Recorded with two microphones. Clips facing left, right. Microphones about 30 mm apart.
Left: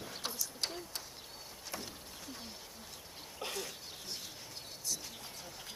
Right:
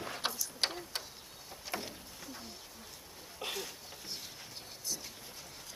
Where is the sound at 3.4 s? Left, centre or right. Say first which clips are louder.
Right 2 dB; centre.